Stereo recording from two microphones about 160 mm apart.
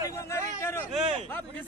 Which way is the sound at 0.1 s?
20° left (ahead or behind).